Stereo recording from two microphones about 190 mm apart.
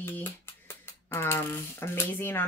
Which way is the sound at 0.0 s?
10° left (ahead or behind).